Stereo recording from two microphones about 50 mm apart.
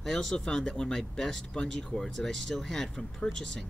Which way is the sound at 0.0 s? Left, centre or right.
Centre.